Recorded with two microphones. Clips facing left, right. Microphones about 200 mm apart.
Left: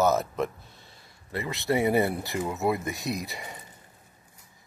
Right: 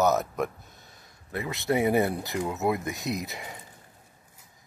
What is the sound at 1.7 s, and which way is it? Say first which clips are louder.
Speech: even; 20° right (ahead or behind).